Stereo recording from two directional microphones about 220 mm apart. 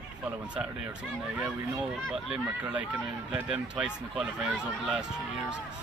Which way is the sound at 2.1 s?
5° right (ahead or behind).